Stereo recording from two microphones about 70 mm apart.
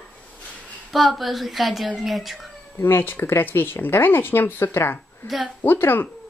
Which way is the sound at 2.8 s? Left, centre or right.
Left.